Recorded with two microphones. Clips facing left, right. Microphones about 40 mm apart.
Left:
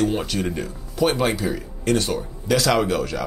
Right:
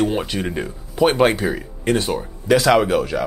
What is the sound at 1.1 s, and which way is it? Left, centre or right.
Speech, right.